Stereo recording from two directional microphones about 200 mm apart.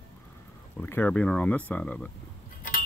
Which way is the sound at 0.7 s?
10° left (ahead or behind).